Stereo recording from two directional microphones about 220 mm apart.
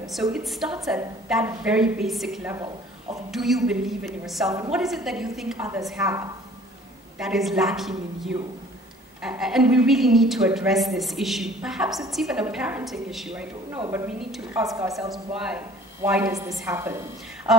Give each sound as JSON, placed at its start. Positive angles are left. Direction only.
{"t": 0.1, "sound": "speech", "side_deg": 0}
{"t": 2.5, "sound": "speech", "side_deg": -15}
{"t": 3.3, "sound": "speech", "side_deg": 0}
{"t": 5.6, "sound": "a woman's voice", "side_deg": -10}
{"t": 7.2, "sound": "speech", "side_deg": 0}
{"t": 9.2, "sound": "speech", "side_deg": 0}
{"t": 13.7, "sound": "a woman's voice", "side_deg": -15}
{"t": 15.0, "sound": "a woman's voice", "side_deg": 0}
{"t": 17.5, "sound": "speech", "side_deg": 0}